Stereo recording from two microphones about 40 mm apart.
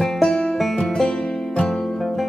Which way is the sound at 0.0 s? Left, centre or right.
Centre.